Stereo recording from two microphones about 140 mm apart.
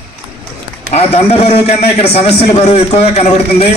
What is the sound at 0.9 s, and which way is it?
A man's voice, 45° left (ahead or behind).